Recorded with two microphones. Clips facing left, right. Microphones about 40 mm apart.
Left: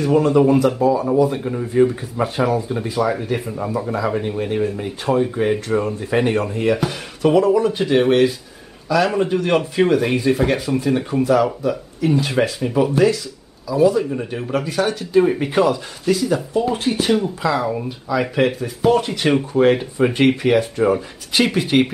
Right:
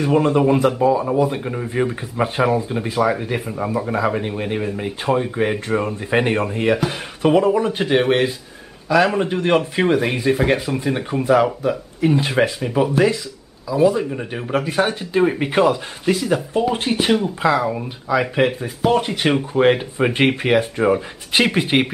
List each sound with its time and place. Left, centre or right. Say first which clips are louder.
0.0 s a man's voice: left 1 dB; right
17.8 s speech: right 1 dB; right